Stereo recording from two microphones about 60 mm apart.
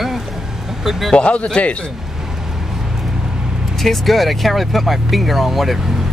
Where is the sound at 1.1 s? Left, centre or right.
Centre.